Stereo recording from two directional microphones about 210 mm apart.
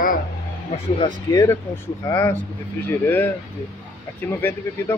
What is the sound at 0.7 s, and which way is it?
Speech, 30° left (ahead or behind).